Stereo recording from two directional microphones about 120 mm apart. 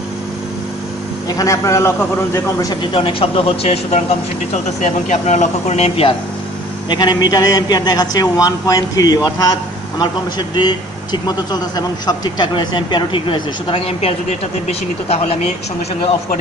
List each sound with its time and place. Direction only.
1.3 s a man's voice: 30° left (ahead or behind)
2.7 s speech: 45° left (ahead or behind)
4.8 s speech: 75° left (ahead or behind); by 6.1 s 55° left (ahead or behind)
6.9 s a man's voice: 40° left (ahead or behind)
14.7 s speech: 60° left (ahead or behind)